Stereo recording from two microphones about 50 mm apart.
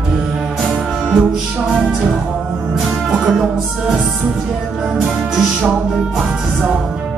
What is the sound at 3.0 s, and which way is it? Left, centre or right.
Music, centre.